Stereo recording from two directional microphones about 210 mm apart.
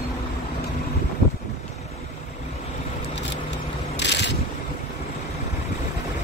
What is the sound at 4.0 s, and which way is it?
Mechanisms, 55° left (ahead or behind).